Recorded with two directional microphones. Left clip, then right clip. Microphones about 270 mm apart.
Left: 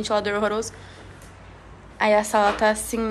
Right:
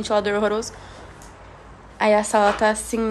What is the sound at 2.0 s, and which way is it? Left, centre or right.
A woman's voice, centre.